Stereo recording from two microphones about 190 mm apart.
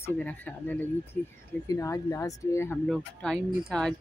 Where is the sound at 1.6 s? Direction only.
15° left (ahead or behind).